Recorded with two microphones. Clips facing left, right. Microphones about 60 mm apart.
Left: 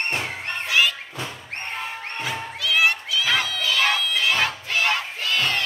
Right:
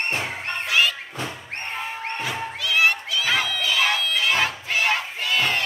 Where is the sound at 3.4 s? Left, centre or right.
Centre.